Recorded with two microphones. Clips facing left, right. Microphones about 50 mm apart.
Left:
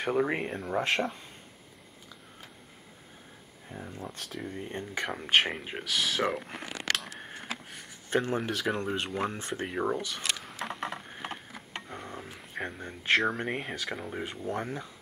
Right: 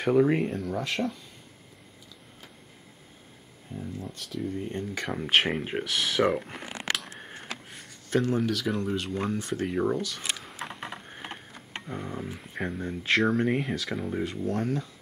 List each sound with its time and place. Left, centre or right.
0.0 s speech: centre
0.6 s speech: left
3.7 s speech: left
5.0 s speech: centre
7.2 s a sound: centre
8.1 s speech: left
9.7 s speech: centre
10.6 s a sound: centre
14.2 s speech: left